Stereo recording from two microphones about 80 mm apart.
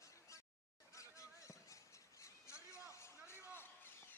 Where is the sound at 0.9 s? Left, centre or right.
Left.